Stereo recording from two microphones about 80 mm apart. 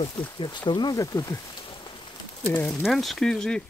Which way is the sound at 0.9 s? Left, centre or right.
Left.